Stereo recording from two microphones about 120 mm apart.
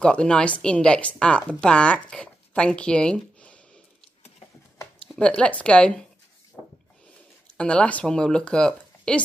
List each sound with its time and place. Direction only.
0.0 s speech: 5° left (ahead or behind)
5.2 s speech: 10° left (ahead or behind)
7.4 s speech: 10° left (ahead or behind)